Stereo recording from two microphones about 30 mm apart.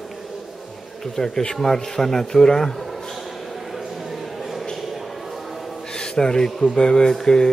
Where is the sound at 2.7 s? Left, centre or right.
Centre.